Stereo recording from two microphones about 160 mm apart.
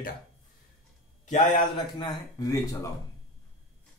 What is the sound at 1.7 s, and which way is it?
Speech, 25° left (ahead or behind).